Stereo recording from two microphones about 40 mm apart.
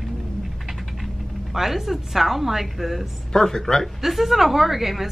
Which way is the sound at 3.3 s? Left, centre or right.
Centre.